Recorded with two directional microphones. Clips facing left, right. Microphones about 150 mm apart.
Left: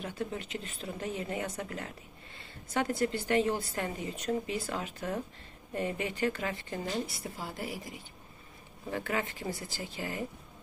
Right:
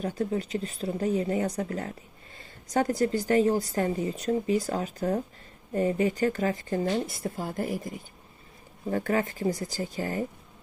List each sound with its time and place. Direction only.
0.0 s a woman's voice: 40° right (ahead or behind)